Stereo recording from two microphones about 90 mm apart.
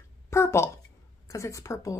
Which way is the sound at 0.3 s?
30° left (ahead or behind).